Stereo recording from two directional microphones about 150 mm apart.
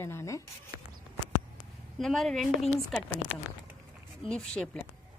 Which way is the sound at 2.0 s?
Centre (ahead or behind).